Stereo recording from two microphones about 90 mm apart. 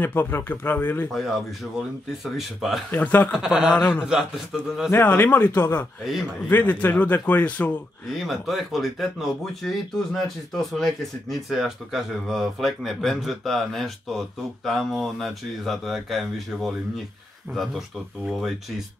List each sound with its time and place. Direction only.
0.0 s a man's voice: 25° left (ahead or behind)
1.1 s speech: centre (ahead or behind)
2.9 s a man's voice: 20° left (ahead or behind)
3.3 s speech: 5° right (ahead or behind)
4.0 s speech: 10° right (ahead or behind)
4.9 s a man's voice: 25° left (ahead or behind)
8.1 s speech: centre (ahead or behind)